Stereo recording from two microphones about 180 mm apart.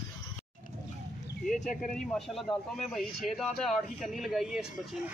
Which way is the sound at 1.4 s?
Centre (ahead or behind).